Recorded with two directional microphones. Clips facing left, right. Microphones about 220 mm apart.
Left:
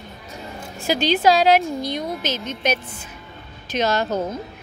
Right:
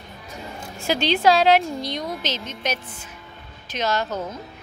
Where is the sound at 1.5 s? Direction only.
50° left (ahead or behind).